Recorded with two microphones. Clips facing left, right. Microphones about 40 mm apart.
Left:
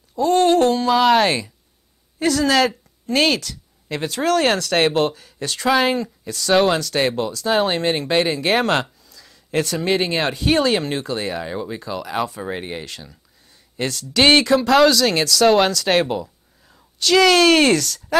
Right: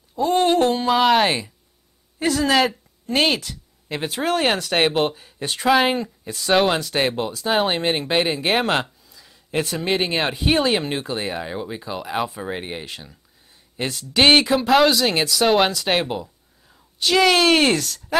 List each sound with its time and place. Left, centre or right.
0.1 s speech: centre
7.8 s speech: centre